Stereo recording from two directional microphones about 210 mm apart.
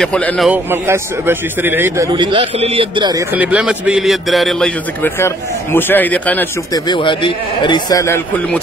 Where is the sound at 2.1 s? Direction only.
20° right (ahead or behind); by 6.8 s 10° left (ahead or behind).